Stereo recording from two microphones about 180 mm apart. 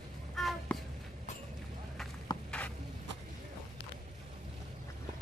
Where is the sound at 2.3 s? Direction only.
25° left (ahead or behind).